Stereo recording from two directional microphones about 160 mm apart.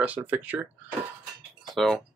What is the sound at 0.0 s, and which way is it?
Speech, 10° right (ahead or behind).